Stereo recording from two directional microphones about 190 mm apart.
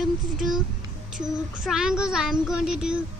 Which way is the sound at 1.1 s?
Centre (ahead or behind).